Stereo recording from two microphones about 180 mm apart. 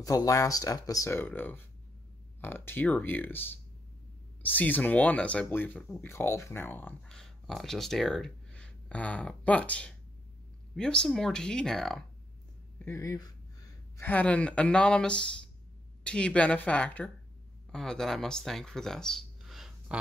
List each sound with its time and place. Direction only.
0.0 s speech: 20° left (ahead or behind); by 12.0 s centre (ahead or behind)
12.7 s speech: 15° left (ahead or behind)